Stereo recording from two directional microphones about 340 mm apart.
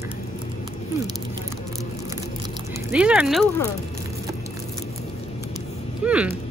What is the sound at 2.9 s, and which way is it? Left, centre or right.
Speech, centre.